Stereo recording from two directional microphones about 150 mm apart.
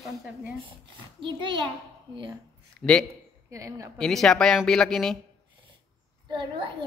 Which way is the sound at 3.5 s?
20° right (ahead or behind).